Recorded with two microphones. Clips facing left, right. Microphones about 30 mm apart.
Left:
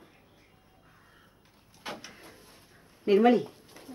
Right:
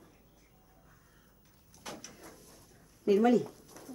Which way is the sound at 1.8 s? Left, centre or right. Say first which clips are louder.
Left 5 dB; left.